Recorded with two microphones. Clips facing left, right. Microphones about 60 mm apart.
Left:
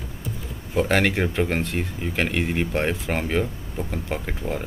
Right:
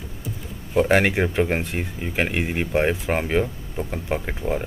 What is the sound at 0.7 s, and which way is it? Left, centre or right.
Speech, centre.